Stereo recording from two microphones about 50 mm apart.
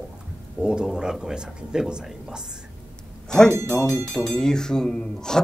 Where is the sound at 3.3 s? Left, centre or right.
Centre.